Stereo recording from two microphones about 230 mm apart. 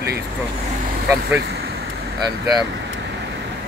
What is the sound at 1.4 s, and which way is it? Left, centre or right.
Speech, right.